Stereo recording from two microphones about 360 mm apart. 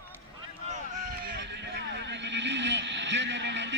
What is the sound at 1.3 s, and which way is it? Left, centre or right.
Vehicle, right.